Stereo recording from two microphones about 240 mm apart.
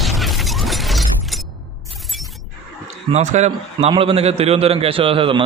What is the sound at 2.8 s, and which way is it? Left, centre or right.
A man's voice, right.